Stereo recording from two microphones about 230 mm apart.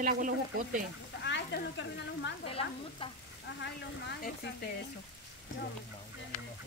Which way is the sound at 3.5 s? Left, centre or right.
Left.